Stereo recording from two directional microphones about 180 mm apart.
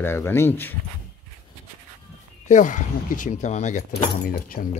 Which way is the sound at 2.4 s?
45° left (ahead or behind).